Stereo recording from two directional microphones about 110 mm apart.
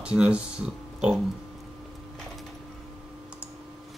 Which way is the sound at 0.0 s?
10° right (ahead or behind).